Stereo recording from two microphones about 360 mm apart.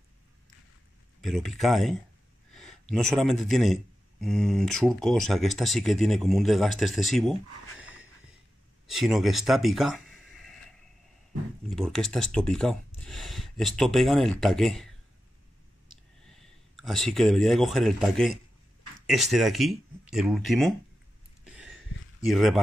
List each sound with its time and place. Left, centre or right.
1.2 s speech: centre
7.8 s wheeze: centre
8.8 s speech: centre
11.7 s speech: centre
16.3 s speech: centre
22.2 s speech: centre